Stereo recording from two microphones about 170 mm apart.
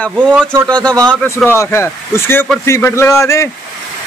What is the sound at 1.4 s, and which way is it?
A man's voice, 15° left (ahead or behind).